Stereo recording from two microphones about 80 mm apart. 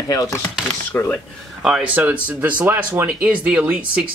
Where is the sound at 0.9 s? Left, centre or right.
Left.